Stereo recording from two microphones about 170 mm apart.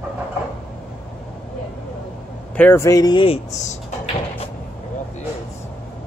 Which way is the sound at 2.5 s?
10° left (ahead or behind).